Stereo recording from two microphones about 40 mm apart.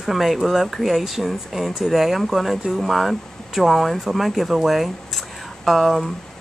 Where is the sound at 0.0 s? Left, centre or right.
Centre.